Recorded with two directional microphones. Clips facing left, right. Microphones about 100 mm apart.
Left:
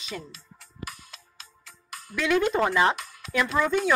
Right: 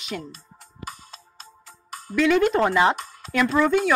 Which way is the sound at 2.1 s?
5° left (ahead or behind).